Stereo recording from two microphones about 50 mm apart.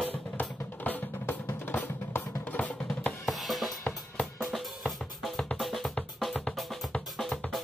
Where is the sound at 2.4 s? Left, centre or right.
Left.